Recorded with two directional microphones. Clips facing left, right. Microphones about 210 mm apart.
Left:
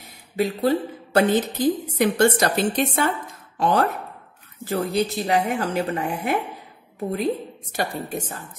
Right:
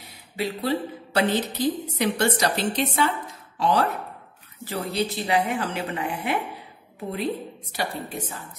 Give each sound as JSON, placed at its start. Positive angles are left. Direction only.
{"t": 0.4, "sound": "a woman's voice", "side_deg": 50}
{"t": 7.7, "sound": "a woman's voice", "side_deg": 45}